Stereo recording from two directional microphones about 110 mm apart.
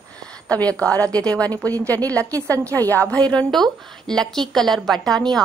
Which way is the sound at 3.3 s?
5° left (ahead or behind).